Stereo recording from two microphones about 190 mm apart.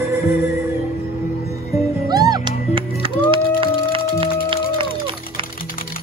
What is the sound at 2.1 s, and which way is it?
Music, 20° right (ahead or behind).